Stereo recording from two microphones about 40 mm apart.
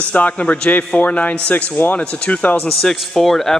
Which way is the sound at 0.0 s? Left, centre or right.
Left.